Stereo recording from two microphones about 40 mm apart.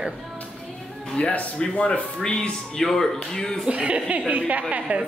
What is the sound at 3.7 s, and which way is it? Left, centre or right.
A woman's voice, right.